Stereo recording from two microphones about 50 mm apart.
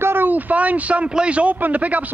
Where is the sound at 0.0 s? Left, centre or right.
Right.